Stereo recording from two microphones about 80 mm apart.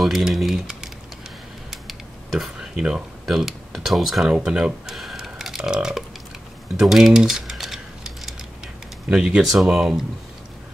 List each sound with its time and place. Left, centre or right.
0.0 s speech: centre
1.7 s a sound: centre
6.8 s typing: centre
9.1 s speech: centre